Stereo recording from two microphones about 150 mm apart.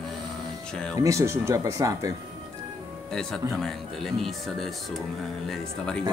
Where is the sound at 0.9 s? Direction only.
20° right (ahead or behind).